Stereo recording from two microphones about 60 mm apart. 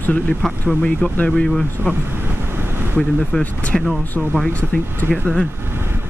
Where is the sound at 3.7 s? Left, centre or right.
Centre.